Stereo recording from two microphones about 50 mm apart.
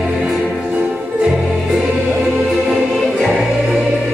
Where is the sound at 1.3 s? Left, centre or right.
Centre.